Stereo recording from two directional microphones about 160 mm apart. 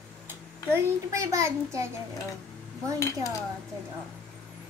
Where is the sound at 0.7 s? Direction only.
20° right (ahead or behind).